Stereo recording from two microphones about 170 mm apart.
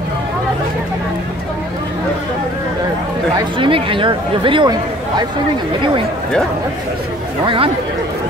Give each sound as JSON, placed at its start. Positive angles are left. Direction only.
{"t": 3.3, "sound": "speech", "side_deg": -30}
{"t": 7.4, "sound": "speech", "side_deg": -30}